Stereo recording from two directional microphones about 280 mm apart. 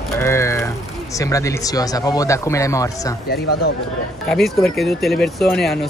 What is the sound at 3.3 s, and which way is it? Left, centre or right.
Speech, left.